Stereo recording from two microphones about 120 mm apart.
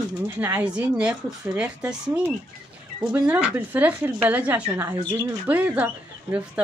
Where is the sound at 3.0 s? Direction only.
40° right (ahead or behind).